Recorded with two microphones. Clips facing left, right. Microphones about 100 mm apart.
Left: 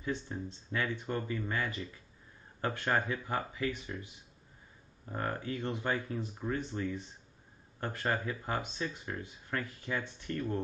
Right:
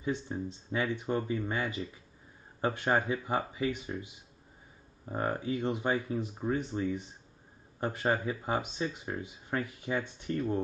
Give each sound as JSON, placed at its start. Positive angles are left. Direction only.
{"t": 0.0, "sound": "speech", "side_deg": -15}